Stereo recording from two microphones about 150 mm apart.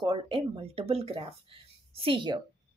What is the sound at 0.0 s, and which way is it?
Speech, 35° right (ahead or behind).